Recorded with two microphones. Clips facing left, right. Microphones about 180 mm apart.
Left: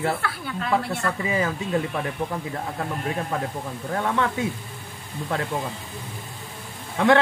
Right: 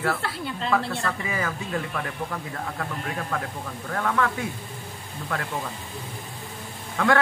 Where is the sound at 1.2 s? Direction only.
25° left (ahead or behind).